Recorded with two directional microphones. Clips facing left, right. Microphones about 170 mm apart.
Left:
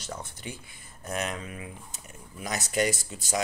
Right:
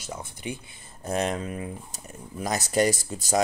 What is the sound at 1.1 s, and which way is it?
Speech, 30° right (ahead or behind).